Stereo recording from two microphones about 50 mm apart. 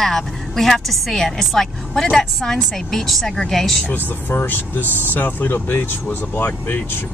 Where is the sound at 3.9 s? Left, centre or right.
Left.